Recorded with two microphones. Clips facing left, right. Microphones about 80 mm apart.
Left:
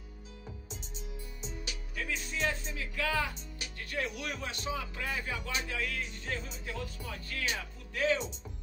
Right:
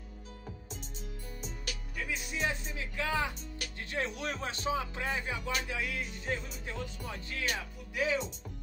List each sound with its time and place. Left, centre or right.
2.0 s speech: centre
7.9 s speech: centre